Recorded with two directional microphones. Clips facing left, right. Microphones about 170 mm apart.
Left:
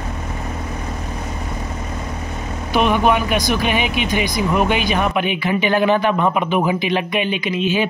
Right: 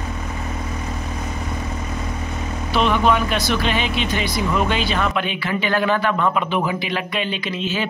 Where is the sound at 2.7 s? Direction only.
15° left (ahead or behind).